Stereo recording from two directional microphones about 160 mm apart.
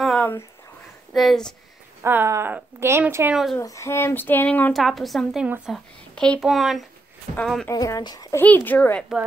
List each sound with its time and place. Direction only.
0.0 s a sound: 5° left (ahead or behind)
1.1 s speech: centre (ahead or behind)
2.0 s a woman's voice: 15° right (ahead or behind)
3.5 s speech: 20° left (ahead or behind); by 7.6 s centre (ahead or behind)
7.6 s speech: 20° left (ahead or behind)
8.4 s speech: 10° left (ahead or behind)